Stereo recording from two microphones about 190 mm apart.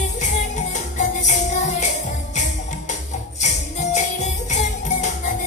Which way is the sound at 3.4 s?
40° left (ahead or behind).